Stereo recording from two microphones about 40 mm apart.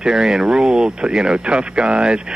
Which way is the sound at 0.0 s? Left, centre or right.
Centre.